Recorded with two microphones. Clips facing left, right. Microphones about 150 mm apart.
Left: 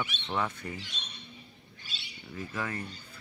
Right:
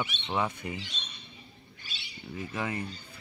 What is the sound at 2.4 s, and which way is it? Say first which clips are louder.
Speech: right 2 dB; 15° right (ahead or behind).